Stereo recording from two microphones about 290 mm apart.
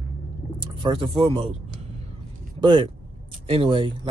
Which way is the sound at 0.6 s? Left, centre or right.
Centre.